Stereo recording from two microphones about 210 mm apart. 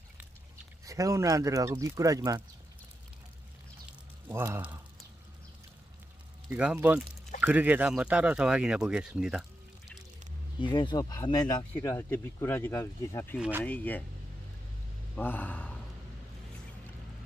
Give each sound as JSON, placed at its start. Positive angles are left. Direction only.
{"t": 0.8, "sound": "speech", "side_deg": -15}
{"t": 4.3, "sound": "speech", "side_deg": -10}
{"t": 6.5, "sound": "speech", "side_deg": -10}
{"t": 10.6, "sound": "speech", "side_deg": 20}
{"t": 13.4, "sound": "speech", "side_deg": -10}
{"t": 13.7, "sound": "speech", "side_deg": 10}
{"t": 15.1, "sound": "speech", "side_deg": 10}